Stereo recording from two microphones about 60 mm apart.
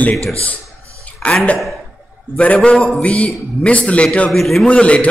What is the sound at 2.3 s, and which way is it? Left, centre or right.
A man's voice, left.